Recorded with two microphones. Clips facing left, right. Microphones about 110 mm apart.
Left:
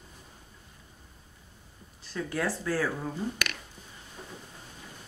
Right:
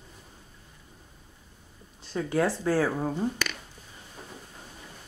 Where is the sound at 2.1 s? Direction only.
25° right (ahead or behind).